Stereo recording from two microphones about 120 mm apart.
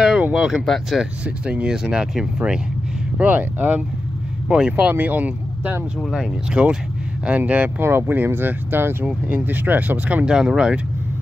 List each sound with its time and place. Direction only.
0.0 s speech: 5° right (ahead or behind)
5.9 s speech: 5° left (ahead or behind)
6.5 s speech: 10° right (ahead or behind)